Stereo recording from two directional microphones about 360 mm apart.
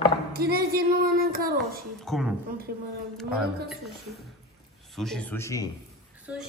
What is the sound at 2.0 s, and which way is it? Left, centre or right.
Speech, centre.